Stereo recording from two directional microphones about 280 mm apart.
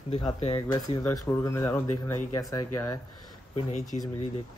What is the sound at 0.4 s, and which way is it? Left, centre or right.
Speech, centre.